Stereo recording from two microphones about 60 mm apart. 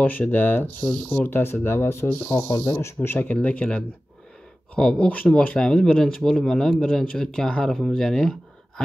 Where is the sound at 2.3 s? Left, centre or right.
Left.